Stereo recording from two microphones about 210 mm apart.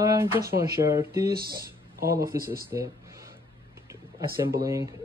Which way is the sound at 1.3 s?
45° right (ahead or behind).